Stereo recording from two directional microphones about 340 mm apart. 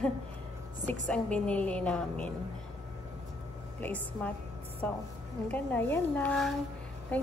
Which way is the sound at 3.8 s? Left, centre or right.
Centre.